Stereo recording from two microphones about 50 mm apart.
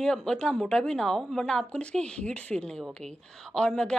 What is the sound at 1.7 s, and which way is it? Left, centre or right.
A woman's voice, left.